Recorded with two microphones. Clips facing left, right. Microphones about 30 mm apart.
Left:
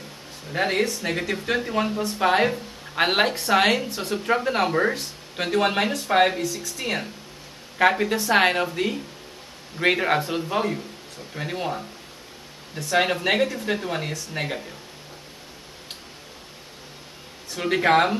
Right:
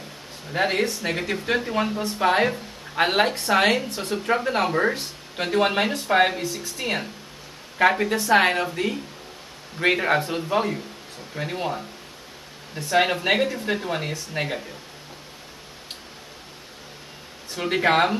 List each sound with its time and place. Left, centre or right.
0.5 s speech: centre
6.4 s speech: right
6.8 s speech: centre
12.9 s speech: centre
17.6 s speech: centre